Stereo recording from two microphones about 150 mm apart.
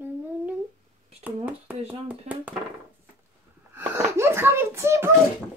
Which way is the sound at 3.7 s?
15° right (ahead or behind).